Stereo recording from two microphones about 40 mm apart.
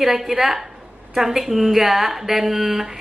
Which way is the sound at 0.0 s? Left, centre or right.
Centre.